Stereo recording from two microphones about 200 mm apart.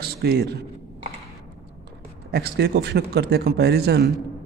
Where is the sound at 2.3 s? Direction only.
55° right (ahead or behind).